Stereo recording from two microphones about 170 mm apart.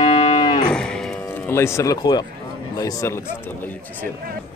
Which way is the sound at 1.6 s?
15° left (ahead or behind).